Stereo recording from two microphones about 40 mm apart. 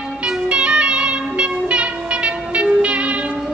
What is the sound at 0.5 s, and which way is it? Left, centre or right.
Music, right.